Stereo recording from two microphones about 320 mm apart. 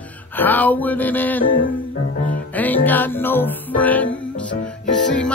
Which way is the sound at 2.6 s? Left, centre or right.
Centre.